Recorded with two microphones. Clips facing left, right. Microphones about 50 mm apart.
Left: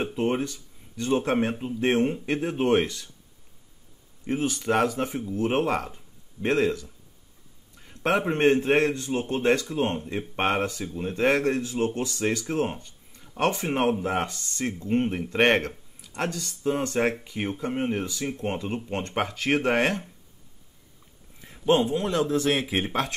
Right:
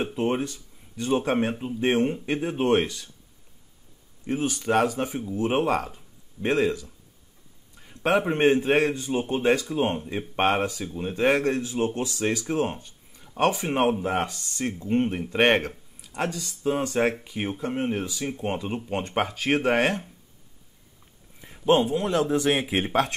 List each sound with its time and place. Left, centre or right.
0.0 s speech: centre
4.3 s speech: centre
14.9 s speech: centre
15.2 s speech: centre
21.4 s a sound: centre
21.9 s speech: centre